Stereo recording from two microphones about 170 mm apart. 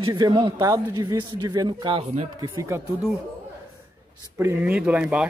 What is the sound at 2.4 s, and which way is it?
Speech, 15° right (ahead or behind).